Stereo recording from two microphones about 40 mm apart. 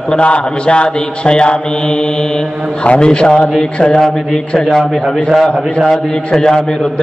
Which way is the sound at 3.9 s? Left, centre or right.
Centre.